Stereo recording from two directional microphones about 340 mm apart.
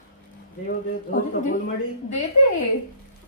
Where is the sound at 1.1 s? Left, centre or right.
Left.